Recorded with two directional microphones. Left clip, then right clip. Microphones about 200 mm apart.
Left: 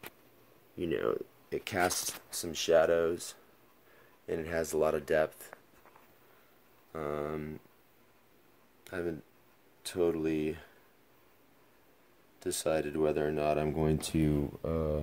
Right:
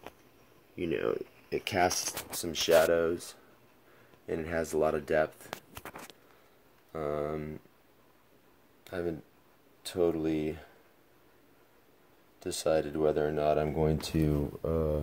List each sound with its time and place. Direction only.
0.7 s speech: 15° left (ahead or behind)
1.5 s speech: centre (ahead or behind)
5.8 s a sound: 90° right
6.9 s speech: centre (ahead or behind)
8.8 s speech: centre (ahead or behind)
12.4 s speech: 5° left (ahead or behind)